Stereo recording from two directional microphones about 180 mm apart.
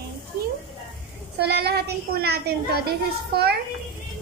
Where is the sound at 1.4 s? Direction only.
65° right (ahead or behind).